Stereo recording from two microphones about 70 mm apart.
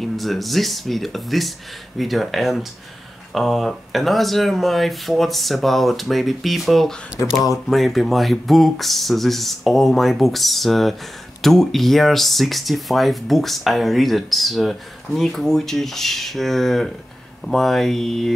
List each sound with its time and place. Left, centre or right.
0.0 s speech: centre
7.2 s speech: left
7.7 s speech: centre